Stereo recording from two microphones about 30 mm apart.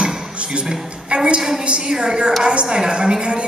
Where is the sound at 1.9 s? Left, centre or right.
Right.